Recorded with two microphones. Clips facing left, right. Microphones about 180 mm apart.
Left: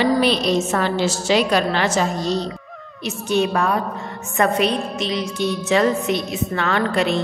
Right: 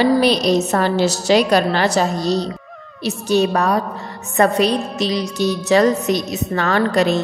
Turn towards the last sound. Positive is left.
turn(degrees=-40)  # may be behind; listen again after turning